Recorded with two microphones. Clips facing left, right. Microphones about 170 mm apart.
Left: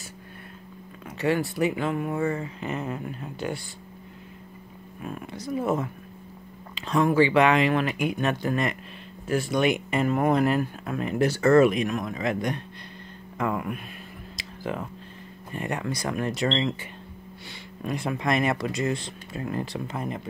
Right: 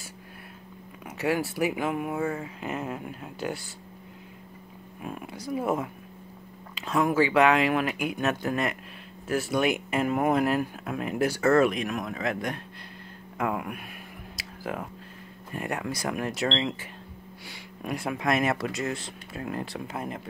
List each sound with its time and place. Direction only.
1.1 s speech: 10° right (ahead or behind)
5.0 s speech: 10° right (ahead or behind)
14.3 s a sound: 5° right (ahead or behind)
15.5 s speech: 5° right (ahead or behind)
17.8 s speech: 5° right (ahead or behind)